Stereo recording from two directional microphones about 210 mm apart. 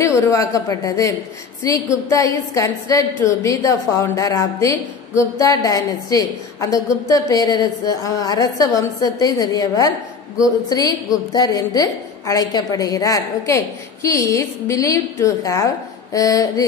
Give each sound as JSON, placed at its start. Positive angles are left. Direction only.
{"t": 0.0, "sound": "a woman's voice", "side_deg": 15}